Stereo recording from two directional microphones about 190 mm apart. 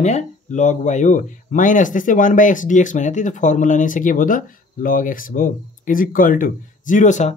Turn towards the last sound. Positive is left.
turn(degrees=40)  # may be behind; listen again after turning